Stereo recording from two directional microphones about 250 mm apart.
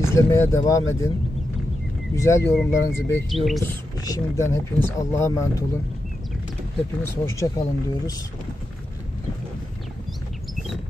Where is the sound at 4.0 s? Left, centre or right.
Centre.